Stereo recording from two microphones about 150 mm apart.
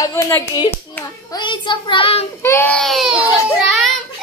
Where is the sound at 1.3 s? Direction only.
30° left (ahead or behind).